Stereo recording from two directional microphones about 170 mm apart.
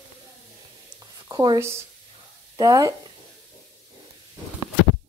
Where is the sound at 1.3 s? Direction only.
25° right (ahead or behind).